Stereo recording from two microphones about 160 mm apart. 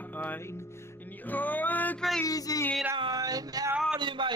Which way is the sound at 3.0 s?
25° right (ahead or behind).